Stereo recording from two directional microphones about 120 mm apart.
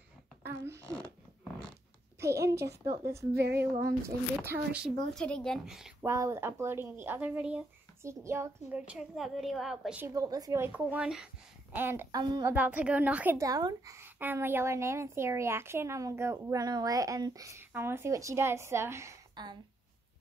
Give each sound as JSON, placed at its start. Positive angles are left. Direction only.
{"t": 0.4, "sound": "speech", "side_deg": -25}
{"t": 2.1, "sound": "a woman's voice", "side_deg": -25}
{"t": 5.1, "sound": "a woman's voice", "side_deg": 5}
{"t": 6.0, "sound": "a woman's voice", "side_deg": -25}
{"t": 8.0, "sound": "a woman's voice", "side_deg": -25}
{"t": 8.7, "sound": "a woman's voice", "side_deg": -5}
{"t": 10.0, "sound": "a woman's voice", "side_deg": -30}
{"t": 10.6, "sound": "a woman's voice", "side_deg": -15}
{"t": 11.7, "sound": "a woman's voice", "side_deg": -20}
{"t": 12.1, "sound": "a woman's voice", "side_deg": -35}
{"t": 12.4, "sound": "a woman's voice", "side_deg": -15}
{"t": 13.4, "sound": "a woman's voice", "side_deg": -30}
{"t": 13.9, "sound": "a woman's voice", "side_deg": -20}
{"t": 19.4, "sound": "a sound", "side_deg": -35}